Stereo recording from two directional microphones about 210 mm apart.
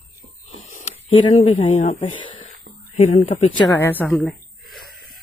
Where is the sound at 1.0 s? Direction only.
25° left (ahead or behind).